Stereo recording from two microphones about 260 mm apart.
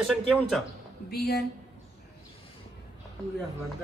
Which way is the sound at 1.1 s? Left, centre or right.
Left.